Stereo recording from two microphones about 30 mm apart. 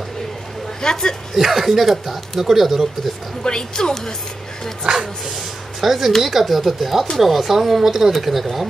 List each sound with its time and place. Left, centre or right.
0.8 s a woman's voice: left
1.3 s speech: centre
3.4 s a woman's voice: left
4.9 s speech: right
5.8 s speech: centre